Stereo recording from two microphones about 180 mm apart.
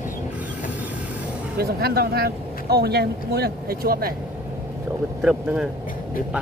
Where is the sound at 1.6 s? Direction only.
60° right (ahead or behind).